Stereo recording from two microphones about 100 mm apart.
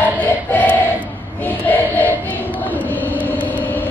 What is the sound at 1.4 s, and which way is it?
Child singing, 20° left (ahead or behind).